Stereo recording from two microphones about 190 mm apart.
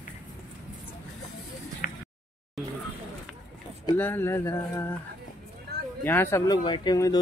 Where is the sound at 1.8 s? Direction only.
50° left (ahead or behind).